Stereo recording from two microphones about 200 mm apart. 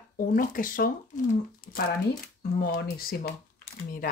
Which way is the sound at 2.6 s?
50° left (ahead or behind).